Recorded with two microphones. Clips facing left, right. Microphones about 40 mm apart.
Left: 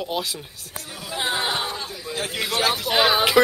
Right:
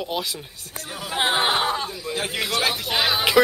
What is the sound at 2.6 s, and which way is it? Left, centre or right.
Speech, centre.